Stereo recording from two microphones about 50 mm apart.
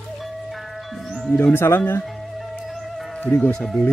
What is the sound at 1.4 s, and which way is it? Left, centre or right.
Speech, left.